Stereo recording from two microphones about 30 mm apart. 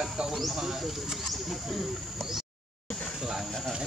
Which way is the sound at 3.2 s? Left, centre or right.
Centre.